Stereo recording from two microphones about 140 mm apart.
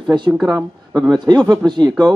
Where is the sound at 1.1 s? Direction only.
30° right (ahead or behind).